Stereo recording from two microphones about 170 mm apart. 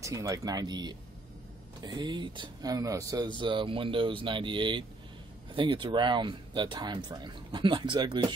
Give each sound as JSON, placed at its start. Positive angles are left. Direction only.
{"t": 0.0, "sound": "speech", "side_deg": -20}